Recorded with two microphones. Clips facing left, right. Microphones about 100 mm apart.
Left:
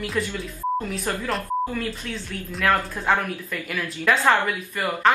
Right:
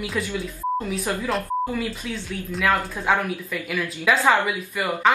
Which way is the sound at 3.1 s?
5° right (ahead or behind).